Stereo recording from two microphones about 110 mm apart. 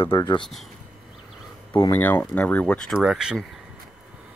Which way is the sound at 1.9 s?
20° left (ahead or behind).